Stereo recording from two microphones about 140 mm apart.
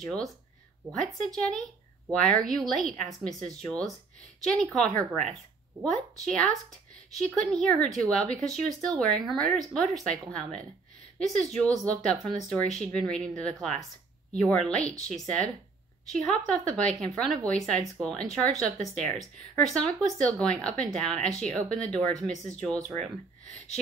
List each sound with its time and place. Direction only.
0.0 s speech: 5° left (ahead or behind)
6.2 s a woman's voice: 5° left (ahead or behind)